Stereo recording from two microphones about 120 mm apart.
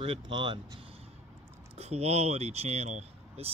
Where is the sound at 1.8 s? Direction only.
60° right (ahead or behind).